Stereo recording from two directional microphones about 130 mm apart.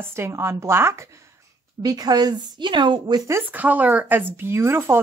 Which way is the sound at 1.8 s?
30° right (ahead or behind).